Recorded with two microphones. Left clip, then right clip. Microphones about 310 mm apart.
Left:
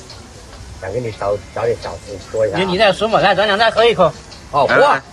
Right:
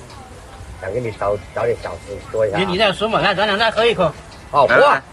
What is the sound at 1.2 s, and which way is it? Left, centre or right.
Speech, centre.